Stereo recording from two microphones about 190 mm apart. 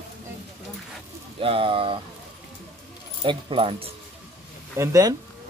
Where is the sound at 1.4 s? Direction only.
30° right (ahead or behind).